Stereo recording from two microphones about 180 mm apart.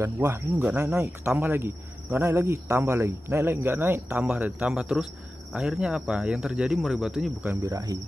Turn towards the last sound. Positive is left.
turn(degrees=-20)  # may be behind; listen again after turning